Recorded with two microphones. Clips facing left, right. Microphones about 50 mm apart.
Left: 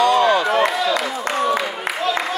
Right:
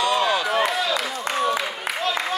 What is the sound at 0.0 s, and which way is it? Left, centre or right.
Chop, centre.